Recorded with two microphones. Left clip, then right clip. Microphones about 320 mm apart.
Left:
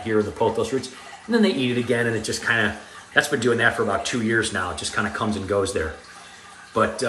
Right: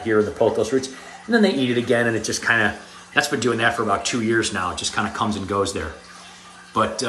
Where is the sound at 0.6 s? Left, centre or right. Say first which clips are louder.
Right 3 dB; centre.